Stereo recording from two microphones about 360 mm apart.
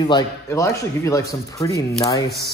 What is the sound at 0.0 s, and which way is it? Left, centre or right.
Speech, centre.